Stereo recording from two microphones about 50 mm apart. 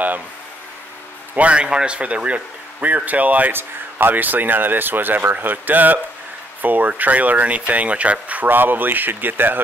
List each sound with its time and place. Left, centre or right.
1.3 s a man's voice: right
8.5 s a man's voice: right